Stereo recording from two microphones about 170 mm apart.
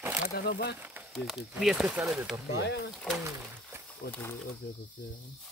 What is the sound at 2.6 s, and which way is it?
Speech, 90° left.